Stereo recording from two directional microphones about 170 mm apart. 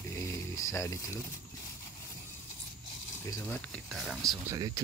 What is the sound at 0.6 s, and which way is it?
Speech, 20° left (ahead or behind).